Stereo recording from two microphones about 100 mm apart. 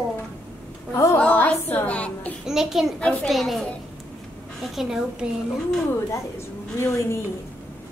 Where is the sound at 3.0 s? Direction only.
10° left (ahead or behind).